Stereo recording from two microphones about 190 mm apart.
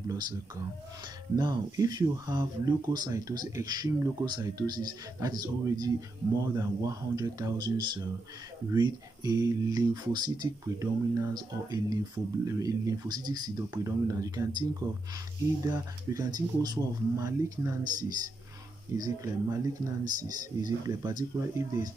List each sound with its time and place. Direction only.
1.3 s speech: 20° right (ahead or behind)
18.9 s speech: 20° right (ahead or behind)